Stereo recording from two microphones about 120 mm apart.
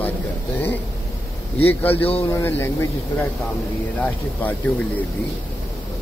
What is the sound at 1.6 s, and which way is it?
Speech, 15° left (ahead or behind).